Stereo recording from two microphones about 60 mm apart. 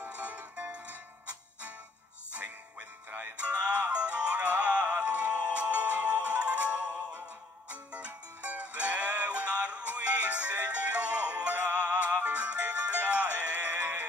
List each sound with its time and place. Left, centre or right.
0.1 s music: right
3.1 s music: right
3.3 s music: right